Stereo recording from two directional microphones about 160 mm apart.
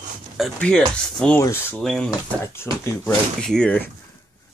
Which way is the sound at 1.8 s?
5° left (ahead or behind).